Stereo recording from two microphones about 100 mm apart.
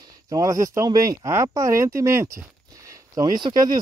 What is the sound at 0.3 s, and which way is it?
Speech, 35° right (ahead or behind).